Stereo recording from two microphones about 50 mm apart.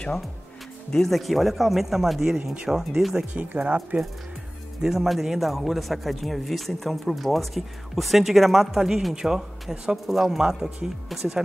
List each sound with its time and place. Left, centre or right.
0.9 s a man's voice: centre
2.3 s speech: centre
3.3 s speech: right
4.8 s a man's voice: centre